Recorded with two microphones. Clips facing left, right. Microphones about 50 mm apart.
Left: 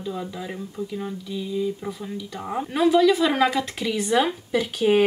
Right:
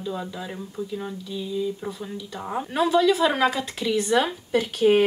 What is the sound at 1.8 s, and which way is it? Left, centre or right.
Speech, centre.